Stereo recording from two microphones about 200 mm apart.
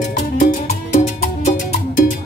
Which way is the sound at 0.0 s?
40° left (ahead or behind).